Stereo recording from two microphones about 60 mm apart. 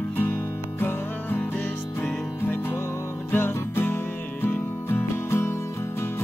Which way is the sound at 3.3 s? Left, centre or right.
Left.